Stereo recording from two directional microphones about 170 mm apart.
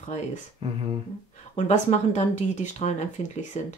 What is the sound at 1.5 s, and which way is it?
Speech, 45° left (ahead or behind).